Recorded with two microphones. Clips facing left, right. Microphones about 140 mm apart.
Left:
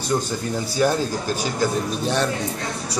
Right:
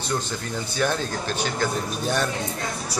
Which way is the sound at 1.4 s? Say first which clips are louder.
Left 3 dB; centre (ahead or behind).